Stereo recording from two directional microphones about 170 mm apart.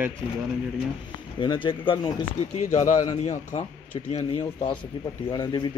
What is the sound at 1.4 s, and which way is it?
Speech, 30° left (ahead or behind).